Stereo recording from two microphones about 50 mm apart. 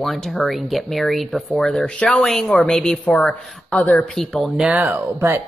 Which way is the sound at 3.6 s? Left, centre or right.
Left.